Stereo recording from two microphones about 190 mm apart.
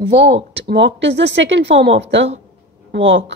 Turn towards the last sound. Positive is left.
turn(degrees=-75)  # may be behind; listen again after turning